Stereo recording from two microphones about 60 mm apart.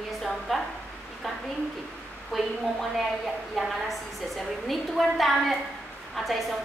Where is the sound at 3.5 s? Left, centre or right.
Centre.